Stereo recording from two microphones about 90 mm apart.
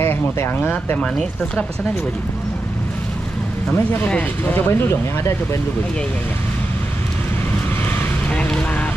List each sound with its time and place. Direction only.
0.0 s speech: 25° left (ahead or behind)
3.7 s speech: 25° left (ahead or behind)
8.3 s speech: 10° left (ahead or behind)